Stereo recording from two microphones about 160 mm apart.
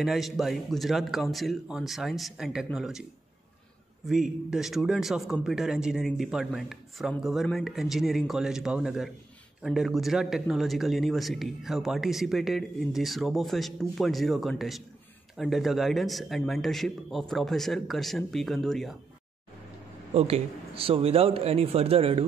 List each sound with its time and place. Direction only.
0.0 s a man's voice: centre (ahead or behind)
20.2 s a man's voice: 40° right (ahead or behind)